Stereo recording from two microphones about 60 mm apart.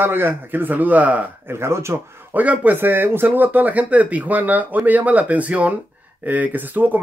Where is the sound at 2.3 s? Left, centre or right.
Right.